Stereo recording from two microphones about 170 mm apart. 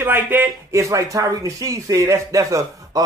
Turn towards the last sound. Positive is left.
turn(degrees=-20)  # may be behind; listen again after turning